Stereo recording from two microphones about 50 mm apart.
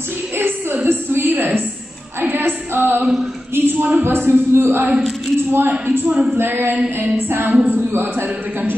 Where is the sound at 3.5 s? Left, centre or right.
Right.